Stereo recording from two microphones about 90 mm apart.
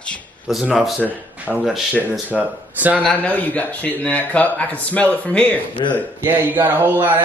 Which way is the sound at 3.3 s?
15° left (ahead or behind).